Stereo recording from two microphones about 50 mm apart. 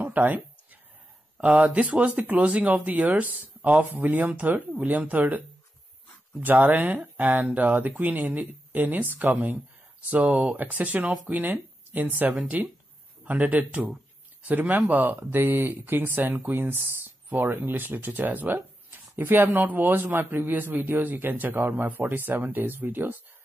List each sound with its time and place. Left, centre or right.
0.0 s a sound: right
1.6 s speech: right
6.4 s speech: right